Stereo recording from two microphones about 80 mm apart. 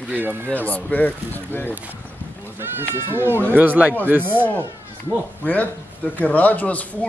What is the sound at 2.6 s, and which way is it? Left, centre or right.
Speech, right.